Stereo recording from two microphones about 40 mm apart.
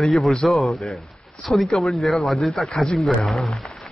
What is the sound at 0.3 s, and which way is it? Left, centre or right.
Speech, centre.